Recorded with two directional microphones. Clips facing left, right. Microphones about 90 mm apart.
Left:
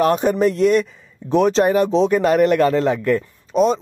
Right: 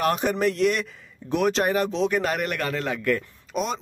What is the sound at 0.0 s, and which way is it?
Speech, 35° left (ahead or behind).